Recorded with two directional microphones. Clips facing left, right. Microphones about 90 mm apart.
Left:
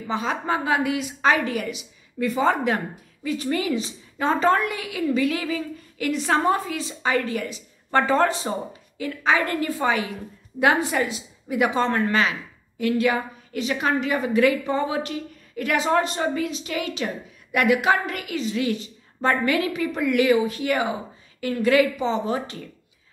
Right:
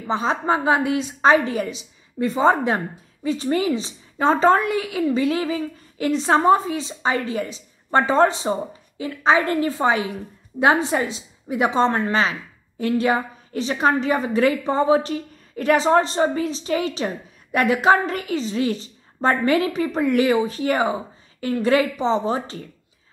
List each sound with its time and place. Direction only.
0.0 s a woman's voice: 30° right (ahead or behind)